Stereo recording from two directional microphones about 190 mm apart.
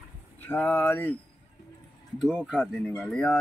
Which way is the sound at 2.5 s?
Centre (ahead or behind).